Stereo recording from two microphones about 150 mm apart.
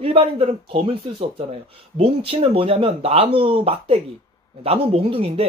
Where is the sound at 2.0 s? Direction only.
40° right (ahead or behind).